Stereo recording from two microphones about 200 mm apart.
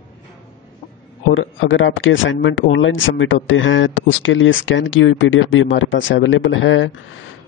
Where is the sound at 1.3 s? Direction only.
75° left (ahead or behind).